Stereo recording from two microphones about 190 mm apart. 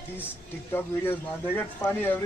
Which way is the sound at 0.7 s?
10° left (ahead or behind).